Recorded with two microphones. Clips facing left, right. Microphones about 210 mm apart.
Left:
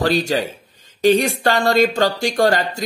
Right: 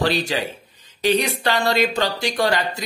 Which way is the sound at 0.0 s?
45° left (ahead or behind).